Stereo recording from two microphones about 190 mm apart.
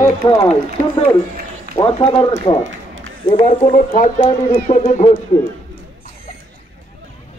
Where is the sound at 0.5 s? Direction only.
35° left (ahead or behind).